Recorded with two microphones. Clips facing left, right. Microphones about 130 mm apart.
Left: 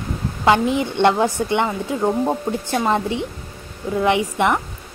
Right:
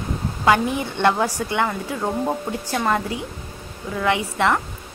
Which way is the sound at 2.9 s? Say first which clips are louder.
Left 3 dB; 25° left (ahead or behind).